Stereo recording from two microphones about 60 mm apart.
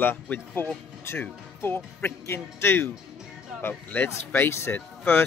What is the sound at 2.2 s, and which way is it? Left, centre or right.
A man's voice, left.